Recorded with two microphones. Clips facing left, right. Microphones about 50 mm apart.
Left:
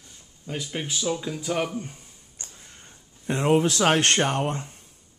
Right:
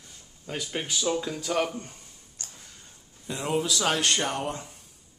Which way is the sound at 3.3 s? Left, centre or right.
Left.